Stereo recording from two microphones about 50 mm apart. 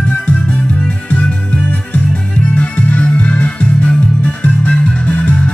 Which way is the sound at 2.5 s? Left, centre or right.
Left.